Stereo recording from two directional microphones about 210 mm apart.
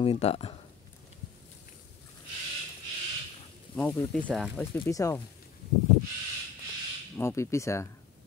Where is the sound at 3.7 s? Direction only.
5° left (ahead or behind).